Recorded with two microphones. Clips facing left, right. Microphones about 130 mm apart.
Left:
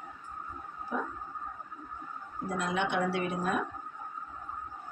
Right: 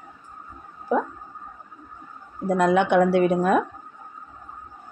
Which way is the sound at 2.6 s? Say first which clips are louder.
Right 13 dB; 60° right (ahead or behind).